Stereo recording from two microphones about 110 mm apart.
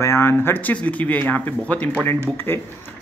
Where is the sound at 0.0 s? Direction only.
25° left (ahead or behind).